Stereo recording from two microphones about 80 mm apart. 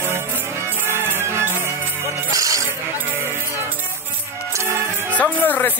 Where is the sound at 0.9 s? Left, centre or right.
Right.